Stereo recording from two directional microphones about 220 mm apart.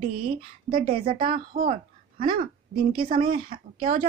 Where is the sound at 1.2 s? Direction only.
40° right (ahead or behind).